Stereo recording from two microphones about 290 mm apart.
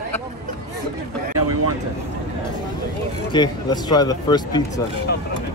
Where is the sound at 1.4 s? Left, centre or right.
Right.